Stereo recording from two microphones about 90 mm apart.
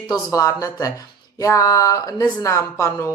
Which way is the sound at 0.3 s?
35° left (ahead or behind).